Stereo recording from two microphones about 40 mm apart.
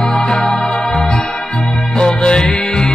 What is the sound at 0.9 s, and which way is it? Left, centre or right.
Organ, centre.